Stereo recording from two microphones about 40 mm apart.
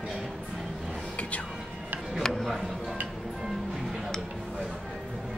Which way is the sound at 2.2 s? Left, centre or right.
Centre.